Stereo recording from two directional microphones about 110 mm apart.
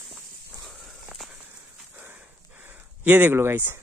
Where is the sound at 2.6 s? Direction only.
15° right (ahead or behind).